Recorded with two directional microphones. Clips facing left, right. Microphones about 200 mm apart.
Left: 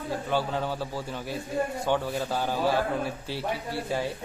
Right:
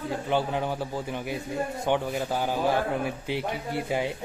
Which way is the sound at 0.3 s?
15° right (ahead or behind).